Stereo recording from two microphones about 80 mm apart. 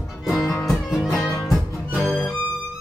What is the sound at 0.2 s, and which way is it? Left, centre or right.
Music, centre.